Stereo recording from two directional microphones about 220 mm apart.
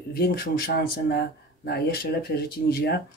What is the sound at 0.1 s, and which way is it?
Speech, 45° left (ahead or behind).